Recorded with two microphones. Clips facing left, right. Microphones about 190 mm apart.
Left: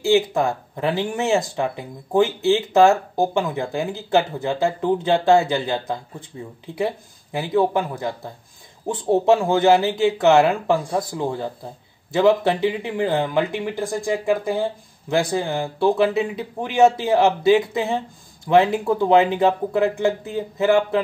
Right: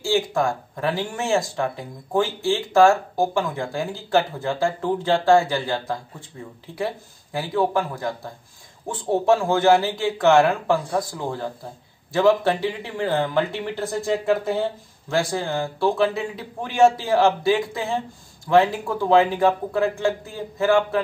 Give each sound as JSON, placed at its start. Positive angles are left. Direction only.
{"t": 0.0, "sound": "speech", "side_deg": 20}